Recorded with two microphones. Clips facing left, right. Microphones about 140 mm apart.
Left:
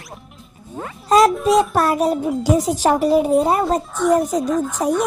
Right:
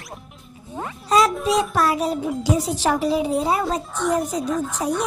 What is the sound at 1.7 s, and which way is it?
Speech, 45° left (ahead or behind).